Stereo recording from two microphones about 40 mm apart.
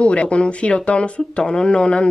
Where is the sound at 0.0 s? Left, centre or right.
Left.